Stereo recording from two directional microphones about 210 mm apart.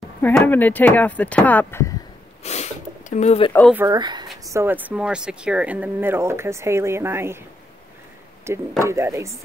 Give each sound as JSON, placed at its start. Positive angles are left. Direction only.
{"t": 0.2, "sound": "speech", "side_deg": 10}
{"t": 2.4, "sound": "sniff", "side_deg": 30}
{"t": 3.7, "sound": "speech", "side_deg": -15}
{"t": 8.5, "sound": "speech", "side_deg": -10}